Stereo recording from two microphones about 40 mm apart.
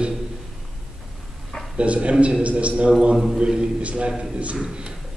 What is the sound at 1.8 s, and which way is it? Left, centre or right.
Speech, right.